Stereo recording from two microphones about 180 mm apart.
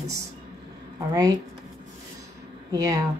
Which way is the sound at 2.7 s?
20° right (ahead or behind).